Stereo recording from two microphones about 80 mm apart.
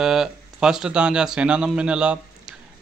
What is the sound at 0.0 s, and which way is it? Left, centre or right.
A man's voice, centre.